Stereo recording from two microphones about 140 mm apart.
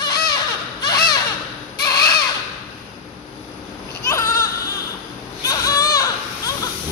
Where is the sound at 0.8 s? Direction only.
30° left (ahead or behind).